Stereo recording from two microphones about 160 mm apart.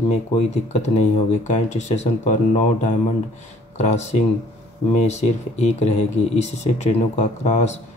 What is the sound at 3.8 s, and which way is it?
Speech, 45° left (ahead or behind).